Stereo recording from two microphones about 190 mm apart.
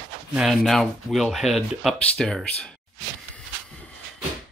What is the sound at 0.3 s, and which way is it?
Speech, centre (ahead or behind).